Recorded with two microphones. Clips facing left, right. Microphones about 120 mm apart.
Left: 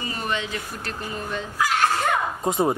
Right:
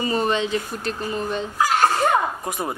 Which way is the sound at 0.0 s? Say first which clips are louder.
Right 7 dB; 30° right (ahead or behind).